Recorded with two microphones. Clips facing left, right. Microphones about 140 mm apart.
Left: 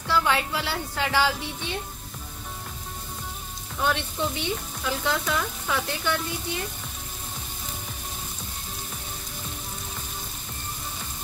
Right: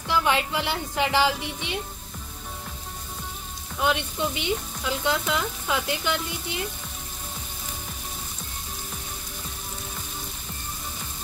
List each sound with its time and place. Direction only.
0.1 s speech: 20° right (ahead or behind)
3.8 s speech: 15° right (ahead or behind)